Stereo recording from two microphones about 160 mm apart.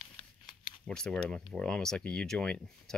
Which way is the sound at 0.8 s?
5° left (ahead or behind).